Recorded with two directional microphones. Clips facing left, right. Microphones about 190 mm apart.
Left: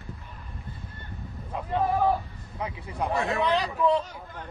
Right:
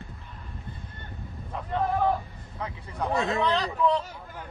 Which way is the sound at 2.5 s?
15° left (ahead or behind).